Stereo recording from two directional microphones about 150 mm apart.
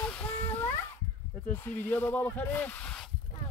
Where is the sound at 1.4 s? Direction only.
15° left (ahead or behind).